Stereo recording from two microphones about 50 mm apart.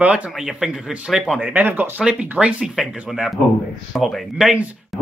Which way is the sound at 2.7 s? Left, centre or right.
Centre.